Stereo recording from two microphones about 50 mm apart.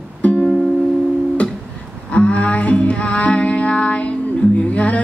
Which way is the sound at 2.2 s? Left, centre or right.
Left.